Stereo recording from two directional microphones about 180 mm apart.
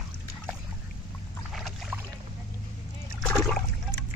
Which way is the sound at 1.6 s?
Centre (ahead or behind).